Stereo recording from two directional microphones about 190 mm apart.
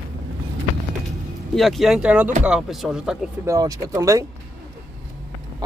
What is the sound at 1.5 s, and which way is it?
Speech, centre (ahead or behind).